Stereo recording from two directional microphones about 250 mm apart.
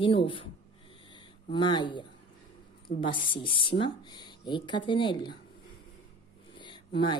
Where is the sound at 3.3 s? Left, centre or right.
Left.